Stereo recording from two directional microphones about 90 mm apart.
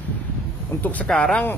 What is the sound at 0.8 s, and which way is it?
Speech, 15° left (ahead or behind).